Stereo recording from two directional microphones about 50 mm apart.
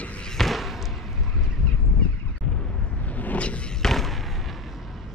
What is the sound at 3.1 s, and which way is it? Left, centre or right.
Vehicle, left.